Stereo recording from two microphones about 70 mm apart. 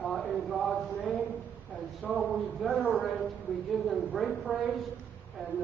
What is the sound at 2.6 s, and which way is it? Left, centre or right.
A man's voice, centre.